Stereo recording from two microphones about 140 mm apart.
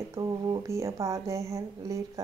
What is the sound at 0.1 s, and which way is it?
Speech, 25° right (ahead or behind).